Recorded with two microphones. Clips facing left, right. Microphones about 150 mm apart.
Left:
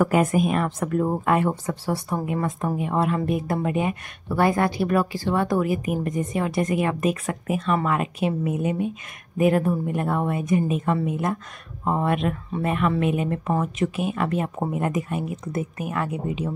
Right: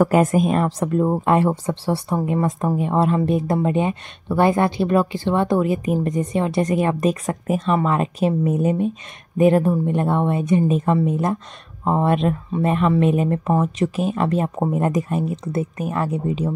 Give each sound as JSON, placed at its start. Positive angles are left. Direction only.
{"t": 0.0, "sound": "a woman's voice", "side_deg": -40}